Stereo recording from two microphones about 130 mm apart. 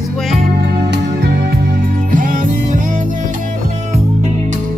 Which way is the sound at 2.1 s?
90° right.